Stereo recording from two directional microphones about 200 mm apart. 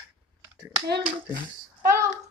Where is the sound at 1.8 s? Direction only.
15° right (ahead or behind).